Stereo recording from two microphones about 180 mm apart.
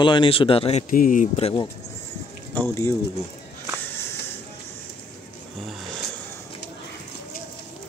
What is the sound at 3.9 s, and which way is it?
Music, 15° left (ahead or behind).